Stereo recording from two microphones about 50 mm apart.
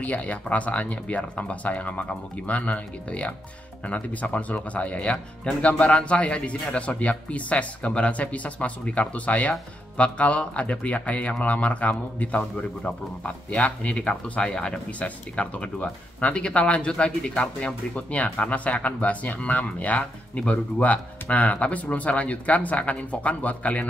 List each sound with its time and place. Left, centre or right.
0.0 s speech: left; by 14.7 s centre
14.9 s speech: left